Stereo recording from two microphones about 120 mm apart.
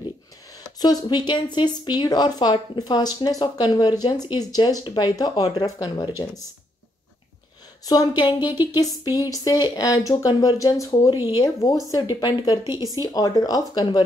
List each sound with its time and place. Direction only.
0.7 s speech: 35° left (ahead or behind)
7.8 s speech: 35° left (ahead or behind)
12.8 s speech: 30° right (ahead or behind)
13.1 s speech: 30° left (ahead or behind)